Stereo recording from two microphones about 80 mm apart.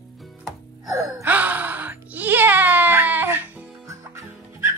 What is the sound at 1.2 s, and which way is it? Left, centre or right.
Music, centre.